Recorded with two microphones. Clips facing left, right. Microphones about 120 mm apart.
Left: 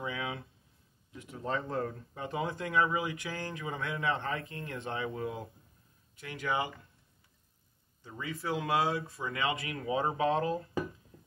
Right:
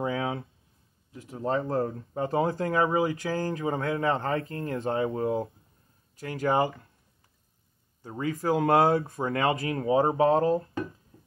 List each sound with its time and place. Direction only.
0.0 s a sound: 40° right (ahead or behind)
1.1 s speech: 35° right (ahead or behind)
8.0 s speech: 45° right (ahead or behind)